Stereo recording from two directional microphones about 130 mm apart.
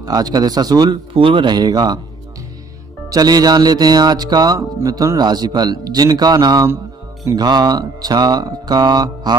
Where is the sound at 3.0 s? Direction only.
30° right (ahead or behind).